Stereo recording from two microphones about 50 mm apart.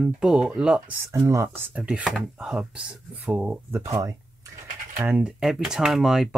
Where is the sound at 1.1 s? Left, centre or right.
Right.